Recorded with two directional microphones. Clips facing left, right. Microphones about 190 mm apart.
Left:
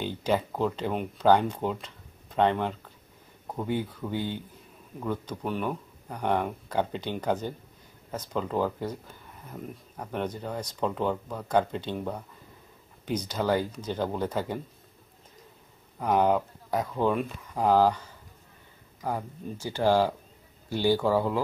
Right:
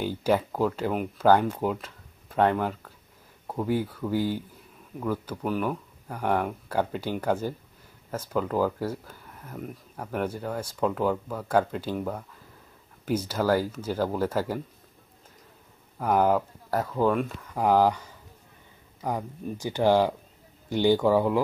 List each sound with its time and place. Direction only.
0.0 s speech: 10° right (ahead or behind)
16.0 s speech: 5° right (ahead or behind)
17.6 s speech: 15° right (ahead or behind)